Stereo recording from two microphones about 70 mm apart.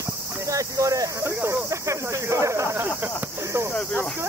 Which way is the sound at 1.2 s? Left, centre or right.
Right.